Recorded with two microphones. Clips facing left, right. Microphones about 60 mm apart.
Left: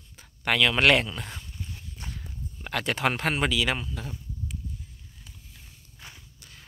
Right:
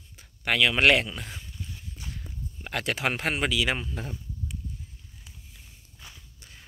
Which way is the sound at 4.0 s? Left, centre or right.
Right.